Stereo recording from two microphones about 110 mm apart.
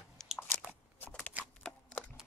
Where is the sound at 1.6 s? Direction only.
15° left (ahead or behind).